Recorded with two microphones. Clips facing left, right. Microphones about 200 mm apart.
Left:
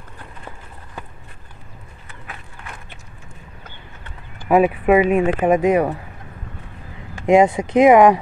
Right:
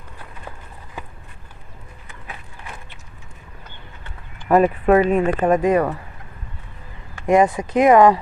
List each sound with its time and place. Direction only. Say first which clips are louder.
4.5 s speech: even; 5° left (ahead or behind)
7.2 s speech: left 2 dB; 25° left (ahead or behind)